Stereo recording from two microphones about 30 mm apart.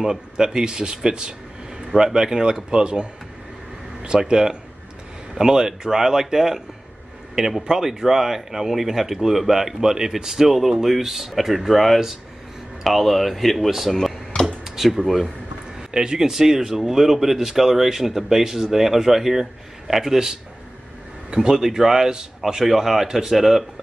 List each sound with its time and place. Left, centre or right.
0.0 s speech: right
1.9 s speech: centre
4.2 s speech: right; by 15.0 s centre
15.9 s speech: right
16.3 s speech: centre
21.4 s speech: centre